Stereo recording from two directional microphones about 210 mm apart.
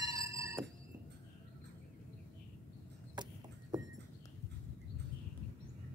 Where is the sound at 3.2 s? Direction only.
20° right (ahead or behind).